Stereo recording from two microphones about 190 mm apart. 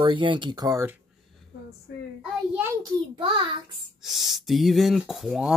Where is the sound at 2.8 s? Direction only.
25° right (ahead or behind).